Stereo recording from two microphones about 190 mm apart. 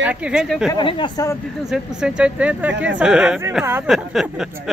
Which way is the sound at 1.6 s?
5° right (ahead or behind).